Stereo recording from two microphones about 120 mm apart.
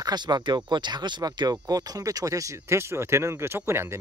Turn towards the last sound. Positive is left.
turn(degrees=-20)  # may be behind; listen again after turning